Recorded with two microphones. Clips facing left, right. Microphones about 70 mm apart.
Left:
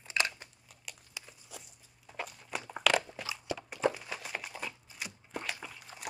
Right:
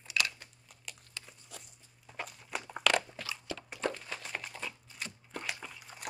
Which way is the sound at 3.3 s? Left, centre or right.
Centre.